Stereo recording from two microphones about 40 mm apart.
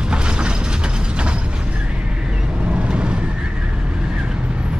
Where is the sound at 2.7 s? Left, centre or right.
Right.